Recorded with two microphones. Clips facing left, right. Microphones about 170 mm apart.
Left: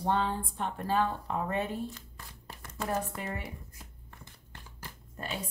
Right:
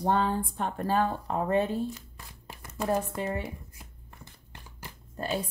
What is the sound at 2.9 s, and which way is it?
Speech, 25° right (ahead or behind).